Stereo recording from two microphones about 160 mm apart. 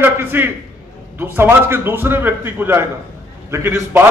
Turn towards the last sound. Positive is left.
turn(degrees=-15)  # may be behind; listen again after turning